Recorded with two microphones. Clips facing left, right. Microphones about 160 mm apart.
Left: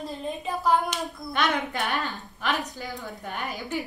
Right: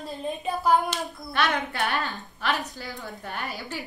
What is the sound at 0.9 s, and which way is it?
A woman's voice, 15° left (ahead or behind).